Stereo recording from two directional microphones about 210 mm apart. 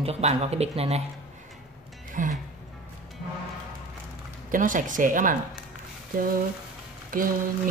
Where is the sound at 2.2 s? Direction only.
40° right (ahead or behind).